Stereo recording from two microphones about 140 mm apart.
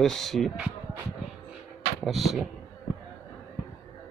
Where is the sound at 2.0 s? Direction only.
Centre (ahead or behind).